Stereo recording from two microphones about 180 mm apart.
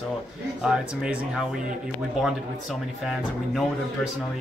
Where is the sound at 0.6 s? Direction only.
5° right (ahead or behind).